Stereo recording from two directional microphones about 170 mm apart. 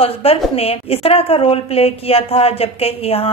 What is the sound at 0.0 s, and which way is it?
A woman's voice, 35° left (ahead or behind).